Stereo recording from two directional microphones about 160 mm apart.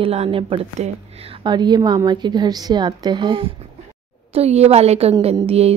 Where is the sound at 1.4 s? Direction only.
25° right (ahead or behind).